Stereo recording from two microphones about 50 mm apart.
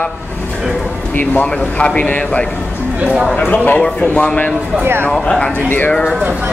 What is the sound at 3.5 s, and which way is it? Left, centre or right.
Speech, left.